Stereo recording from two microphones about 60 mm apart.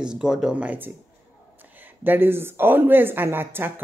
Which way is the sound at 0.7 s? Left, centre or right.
Right.